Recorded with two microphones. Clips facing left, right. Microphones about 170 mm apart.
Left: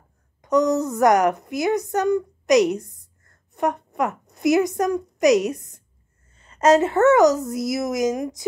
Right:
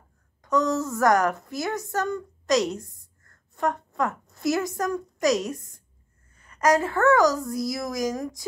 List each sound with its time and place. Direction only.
0.4 s a woman's voice: 20° left (ahead or behind)